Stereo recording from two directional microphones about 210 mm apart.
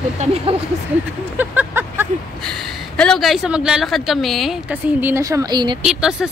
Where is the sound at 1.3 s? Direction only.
10° right (ahead or behind).